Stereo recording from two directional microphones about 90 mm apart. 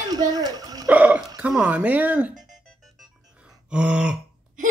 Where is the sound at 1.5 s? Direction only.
10° right (ahead or behind).